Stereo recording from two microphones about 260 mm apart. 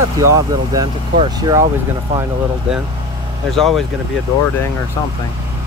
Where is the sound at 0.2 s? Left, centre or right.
Centre.